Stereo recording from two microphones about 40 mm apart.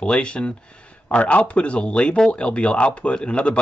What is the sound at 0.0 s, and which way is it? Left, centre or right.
Speech, left.